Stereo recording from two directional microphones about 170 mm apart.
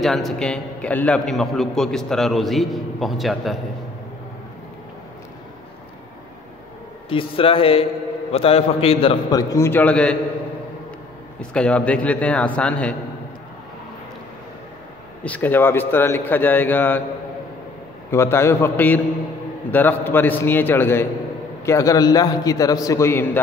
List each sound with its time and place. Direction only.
0.0 s a man's voice: centre (ahead or behind)
7.1 s a man's voice: 30° left (ahead or behind)
9.3 s a man's voice: 20° left (ahead or behind)
11.5 s a man's voice: 5° left (ahead or behind)
15.2 s a man's voice: 10° left (ahead or behind)
18.1 s a man's voice: 15° left (ahead or behind)